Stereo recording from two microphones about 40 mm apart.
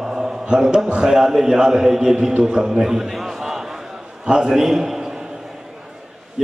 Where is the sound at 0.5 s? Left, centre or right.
Right.